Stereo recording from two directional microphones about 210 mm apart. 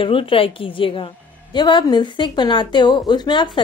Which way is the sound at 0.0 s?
25° left (ahead or behind).